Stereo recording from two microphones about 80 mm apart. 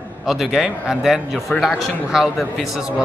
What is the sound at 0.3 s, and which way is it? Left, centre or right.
A man's voice, centre.